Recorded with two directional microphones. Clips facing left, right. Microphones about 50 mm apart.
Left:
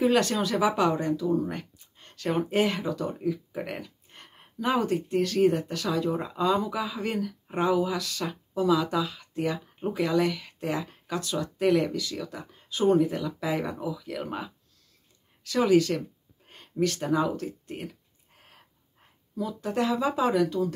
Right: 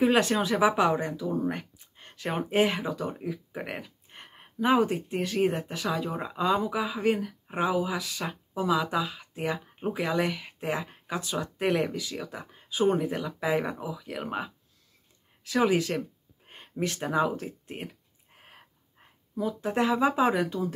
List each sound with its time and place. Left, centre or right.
0.1 s speech: right
18.3 s a sound: right
19.3 s speech: right